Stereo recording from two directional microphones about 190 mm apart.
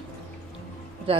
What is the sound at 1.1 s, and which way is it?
Speech, 30° right (ahead or behind).